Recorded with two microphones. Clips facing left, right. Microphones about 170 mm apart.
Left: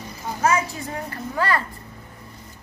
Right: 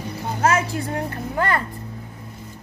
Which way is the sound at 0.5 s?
70° right (ahead or behind).